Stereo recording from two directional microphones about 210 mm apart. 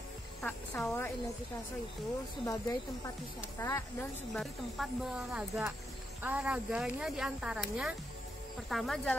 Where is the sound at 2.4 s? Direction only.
15° left (ahead or behind).